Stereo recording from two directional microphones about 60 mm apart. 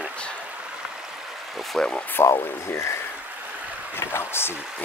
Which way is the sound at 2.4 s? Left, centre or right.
Left.